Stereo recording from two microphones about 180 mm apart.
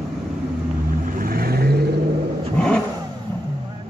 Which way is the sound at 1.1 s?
55° right (ahead or behind).